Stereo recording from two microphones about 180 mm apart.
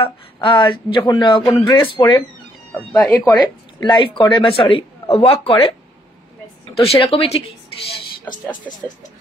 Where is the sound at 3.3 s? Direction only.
25° left (ahead or behind).